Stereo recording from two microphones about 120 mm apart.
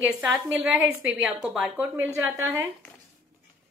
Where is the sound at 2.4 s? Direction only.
25° right (ahead or behind).